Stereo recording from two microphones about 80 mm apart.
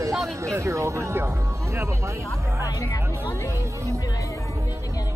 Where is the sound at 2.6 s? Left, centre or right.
Left.